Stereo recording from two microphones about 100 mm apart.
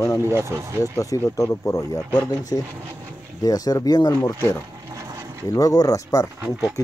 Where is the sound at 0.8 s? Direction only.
35° left (ahead or behind).